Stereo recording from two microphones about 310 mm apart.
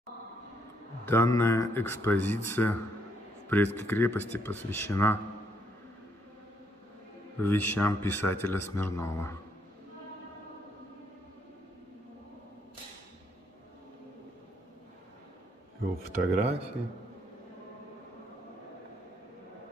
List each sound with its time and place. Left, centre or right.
1.0 s speech: centre
7.4 s speech: centre
15.8 s speech: right